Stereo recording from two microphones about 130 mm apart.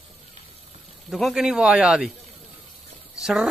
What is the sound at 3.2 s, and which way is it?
Speech, 5° right (ahead or behind).